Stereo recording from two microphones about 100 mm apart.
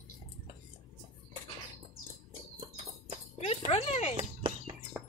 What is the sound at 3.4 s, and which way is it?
Music, 90° left.